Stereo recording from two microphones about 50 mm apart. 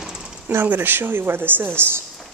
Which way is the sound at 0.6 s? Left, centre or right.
Right.